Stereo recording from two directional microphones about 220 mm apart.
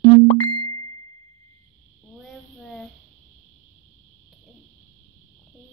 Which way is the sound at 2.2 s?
Centre (ahead or behind).